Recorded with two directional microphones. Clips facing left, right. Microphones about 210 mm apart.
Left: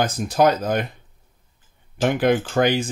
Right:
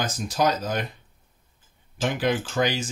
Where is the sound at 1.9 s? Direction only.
55° left (ahead or behind).